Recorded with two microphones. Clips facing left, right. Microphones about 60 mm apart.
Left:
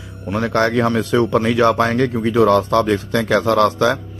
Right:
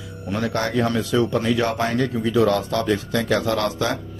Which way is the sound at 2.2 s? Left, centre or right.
Left.